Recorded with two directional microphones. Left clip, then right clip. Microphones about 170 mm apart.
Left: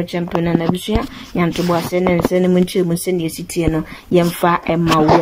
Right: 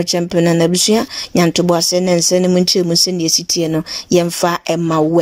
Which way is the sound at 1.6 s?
40° right (ahead or behind).